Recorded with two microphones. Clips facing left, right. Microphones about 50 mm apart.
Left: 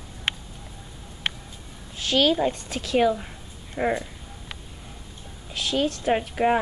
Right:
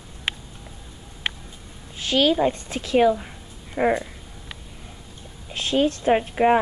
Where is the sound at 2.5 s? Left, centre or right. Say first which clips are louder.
Right 3 dB; right.